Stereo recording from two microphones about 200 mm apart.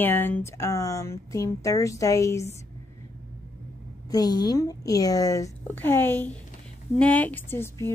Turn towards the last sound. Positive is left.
turn(degrees=10)  # may be behind; listen again after turning